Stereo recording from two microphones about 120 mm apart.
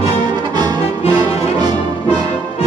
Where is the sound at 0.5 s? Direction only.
35° right (ahead or behind).